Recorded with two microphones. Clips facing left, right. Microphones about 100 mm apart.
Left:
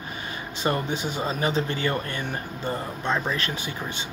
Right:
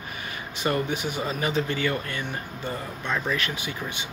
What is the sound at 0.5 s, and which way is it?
Speech, 25° left (ahead or behind).